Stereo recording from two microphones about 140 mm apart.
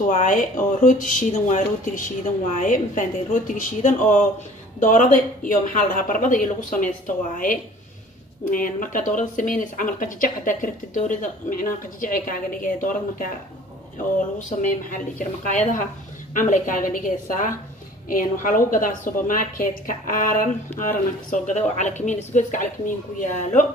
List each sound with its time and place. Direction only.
0.0 s speech: 70° left (ahead or behind)
14.9 s speech: 65° left (ahead or behind)